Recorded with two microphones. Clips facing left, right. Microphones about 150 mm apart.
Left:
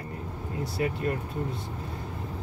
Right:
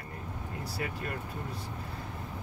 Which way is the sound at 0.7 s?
25° left (ahead or behind).